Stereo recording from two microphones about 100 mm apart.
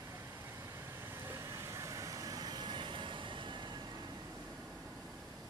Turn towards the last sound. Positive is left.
turn(degrees=-55)  # may be behind; listen again after turning